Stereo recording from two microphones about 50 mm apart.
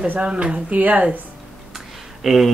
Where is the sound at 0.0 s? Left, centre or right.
Right.